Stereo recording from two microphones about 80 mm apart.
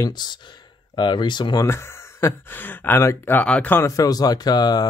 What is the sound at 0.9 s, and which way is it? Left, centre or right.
Speech, left.